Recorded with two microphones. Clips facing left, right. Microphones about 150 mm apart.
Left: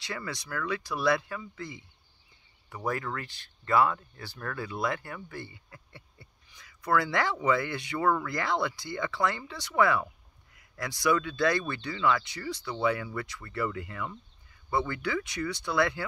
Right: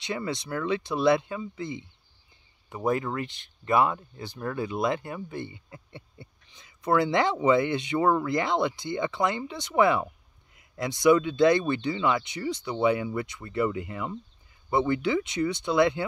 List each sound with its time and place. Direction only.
0.0 s speech: 20° right (ahead or behind)